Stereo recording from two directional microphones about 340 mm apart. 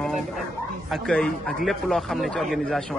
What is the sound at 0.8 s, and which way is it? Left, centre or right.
A man's voice, centre.